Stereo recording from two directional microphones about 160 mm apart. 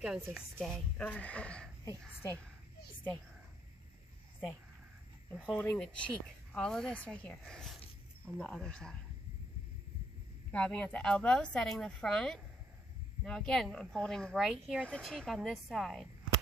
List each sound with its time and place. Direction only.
0.0 s speech: centre (ahead or behind)
5.5 s speech: 10° left (ahead or behind)
10.5 s speech: 10° left (ahead or behind)